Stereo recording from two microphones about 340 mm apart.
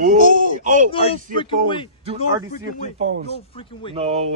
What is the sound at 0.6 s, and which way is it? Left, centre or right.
Speech, right.